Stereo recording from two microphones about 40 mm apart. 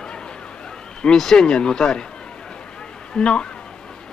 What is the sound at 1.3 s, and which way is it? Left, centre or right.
Speech, centre.